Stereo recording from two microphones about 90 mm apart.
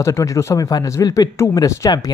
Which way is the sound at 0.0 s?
35° left (ahead or behind).